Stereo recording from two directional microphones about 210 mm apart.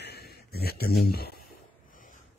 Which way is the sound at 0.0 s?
50° left (ahead or behind).